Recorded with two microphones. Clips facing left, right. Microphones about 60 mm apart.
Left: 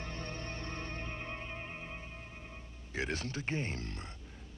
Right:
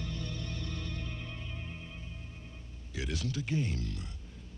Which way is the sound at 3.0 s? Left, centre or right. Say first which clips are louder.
Even; left.